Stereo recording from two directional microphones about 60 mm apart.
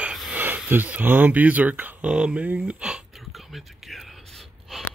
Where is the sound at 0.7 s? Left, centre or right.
Right.